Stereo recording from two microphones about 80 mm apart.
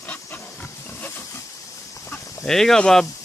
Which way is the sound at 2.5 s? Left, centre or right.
Centre.